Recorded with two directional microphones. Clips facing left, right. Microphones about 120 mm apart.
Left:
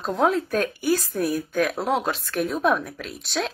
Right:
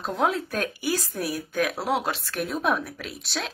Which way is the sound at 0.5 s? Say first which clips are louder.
Left 5 dB; 50° left (ahead or behind).